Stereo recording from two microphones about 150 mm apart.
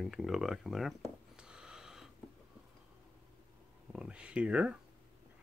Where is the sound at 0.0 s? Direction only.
Centre (ahead or behind).